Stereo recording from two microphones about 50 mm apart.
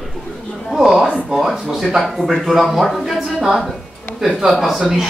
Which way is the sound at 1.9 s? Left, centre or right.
Centre.